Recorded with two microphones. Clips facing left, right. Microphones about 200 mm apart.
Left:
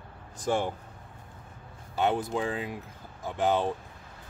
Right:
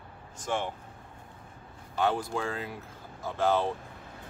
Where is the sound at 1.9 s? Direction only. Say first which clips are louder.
Left 1 dB; 20° left (ahead or behind).